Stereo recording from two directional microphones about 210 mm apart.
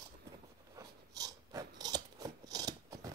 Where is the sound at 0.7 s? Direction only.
15° right (ahead or behind).